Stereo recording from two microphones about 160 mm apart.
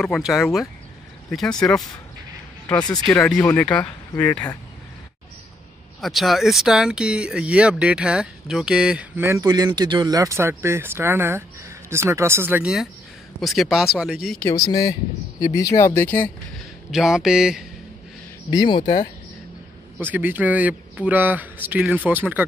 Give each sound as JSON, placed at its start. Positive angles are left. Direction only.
{"t": 0.0, "sound": "speech", "side_deg": 0}
{"t": 3.1, "sound": "speech", "side_deg": 5}
{"t": 5.9, "sound": "speech", "side_deg": 0}
{"t": 13.4, "sound": "speech", "side_deg": 0}
{"t": 14.5, "sound": "speech", "side_deg": 20}
{"t": 16.5, "sound": "a man's voice", "side_deg": 0}
{"t": 18.5, "sound": "speech", "side_deg": 30}
{"t": 20.1, "sound": "speech", "side_deg": -10}